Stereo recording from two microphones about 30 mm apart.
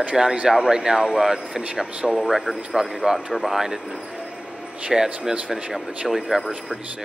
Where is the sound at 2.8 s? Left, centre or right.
Right.